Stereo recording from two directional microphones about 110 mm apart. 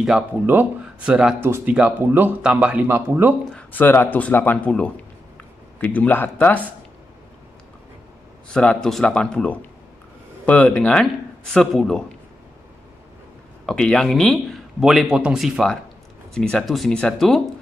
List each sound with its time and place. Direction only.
0.3 s speech: 20° right (ahead or behind)
3.5 s speech: 15° left (ahead or behind)
8.5 s a man's voice: 5° left (ahead or behind)
13.7 s a man's voice: 5° left (ahead or behind)